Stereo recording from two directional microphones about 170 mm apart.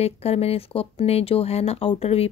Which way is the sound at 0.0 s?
35° left (ahead or behind).